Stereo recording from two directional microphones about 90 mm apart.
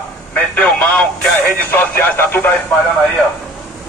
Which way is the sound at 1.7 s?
25° left (ahead or behind).